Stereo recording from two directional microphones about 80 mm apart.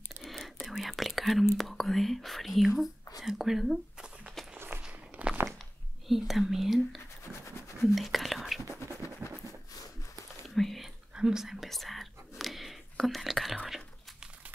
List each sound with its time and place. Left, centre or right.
0.2 s whispering: centre
1.6 s speech: centre
4.6 s a sound: right
5.1 s a sound: centre
6.0 s speech: centre
7.8 s whispering: centre
8.8 s scratch: left
10.5 s whispering: centre
13.7 s biting: centre